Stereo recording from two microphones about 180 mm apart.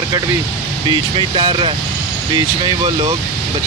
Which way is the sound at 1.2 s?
25° right (ahead or behind).